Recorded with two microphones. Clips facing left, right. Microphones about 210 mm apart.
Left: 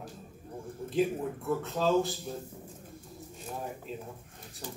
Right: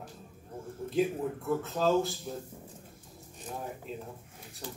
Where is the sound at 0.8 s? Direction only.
Centre (ahead or behind).